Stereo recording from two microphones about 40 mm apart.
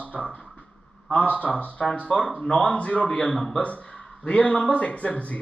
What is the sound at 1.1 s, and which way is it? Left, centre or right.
A man's voice, left.